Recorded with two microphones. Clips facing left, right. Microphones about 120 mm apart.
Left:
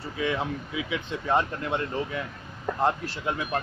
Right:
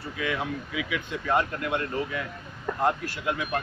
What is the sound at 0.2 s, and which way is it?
Speech, 30° left (ahead or behind).